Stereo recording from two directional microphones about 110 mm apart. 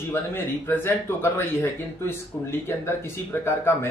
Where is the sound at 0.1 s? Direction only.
20° left (ahead or behind).